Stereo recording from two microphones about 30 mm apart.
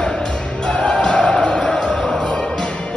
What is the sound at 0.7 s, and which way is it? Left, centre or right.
Music, left.